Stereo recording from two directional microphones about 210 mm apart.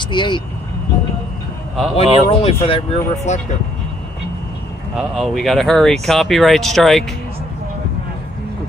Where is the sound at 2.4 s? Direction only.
25° left (ahead or behind).